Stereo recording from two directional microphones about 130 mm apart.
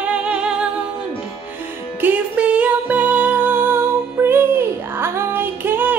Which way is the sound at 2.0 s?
10° right (ahead or behind).